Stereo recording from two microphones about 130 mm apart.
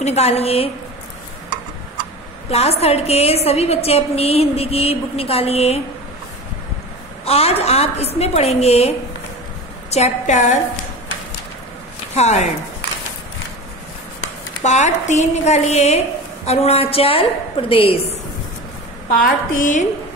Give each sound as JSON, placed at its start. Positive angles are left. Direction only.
{"t": 0.0, "sound": "a woman's voice", "side_deg": 55}
{"t": 2.5, "sound": "a woman's voice", "side_deg": 50}
{"t": 7.2, "sound": "a woman's voice", "side_deg": 50}
{"t": 12.1, "sound": "speech", "side_deg": 60}
{"t": 14.6, "sound": "a woman's voice", "side_deg": 65}
{"t": 19.1, "sound": "a woman's voice", "side_deg": 90}